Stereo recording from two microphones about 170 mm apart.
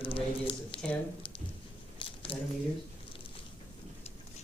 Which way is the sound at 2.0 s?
30° left (ahead or behind).